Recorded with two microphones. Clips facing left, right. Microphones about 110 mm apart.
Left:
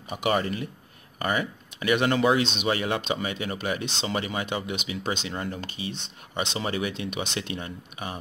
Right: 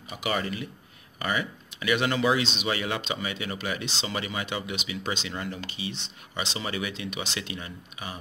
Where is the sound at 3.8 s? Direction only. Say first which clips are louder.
Left 2 dB; 55° left (ahead or behind).